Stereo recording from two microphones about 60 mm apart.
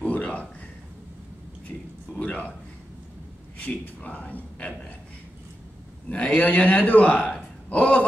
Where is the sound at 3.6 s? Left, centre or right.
Left.